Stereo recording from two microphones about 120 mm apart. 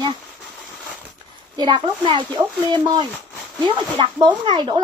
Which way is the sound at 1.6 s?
40° right (ahead or behind).